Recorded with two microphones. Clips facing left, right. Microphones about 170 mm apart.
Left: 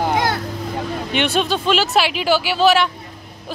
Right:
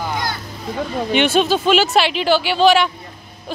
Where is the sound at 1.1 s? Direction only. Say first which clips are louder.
Right 4 dB; centre (ahead or behind).